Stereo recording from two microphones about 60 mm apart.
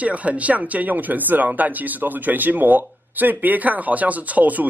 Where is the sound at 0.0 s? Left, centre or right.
Right.